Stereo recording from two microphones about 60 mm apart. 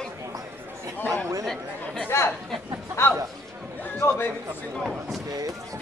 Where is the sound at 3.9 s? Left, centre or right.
Left.